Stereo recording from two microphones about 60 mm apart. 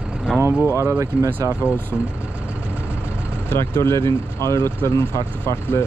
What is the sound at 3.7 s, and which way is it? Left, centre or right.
Speech, left.